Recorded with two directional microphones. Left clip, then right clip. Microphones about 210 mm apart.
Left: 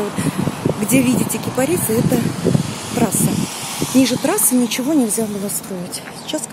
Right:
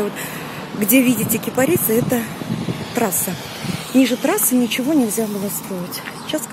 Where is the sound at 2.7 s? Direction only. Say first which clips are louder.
Left 1 dB; 45° left (ahead or behind).